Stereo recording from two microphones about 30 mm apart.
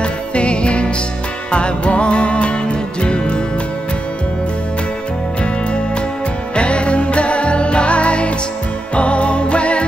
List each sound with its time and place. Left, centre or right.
0.0 s music: left
6.5 s music: left